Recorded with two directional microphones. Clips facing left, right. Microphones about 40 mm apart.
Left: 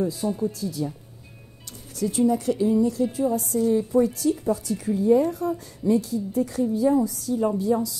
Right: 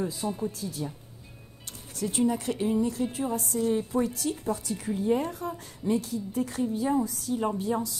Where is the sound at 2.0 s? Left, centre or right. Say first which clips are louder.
Left 5 dB; right.